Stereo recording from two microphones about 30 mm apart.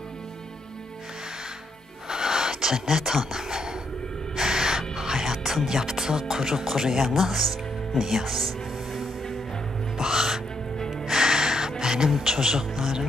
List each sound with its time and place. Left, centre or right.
2.0 s a sound: centre
4.4 s gasp: centre
5.7 s speech: centre
9.9 s music: centre
11.8 s a sound: centre
12.2 s speech: centre